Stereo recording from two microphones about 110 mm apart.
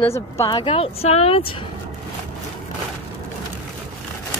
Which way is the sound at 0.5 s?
50° left (ahead or behind).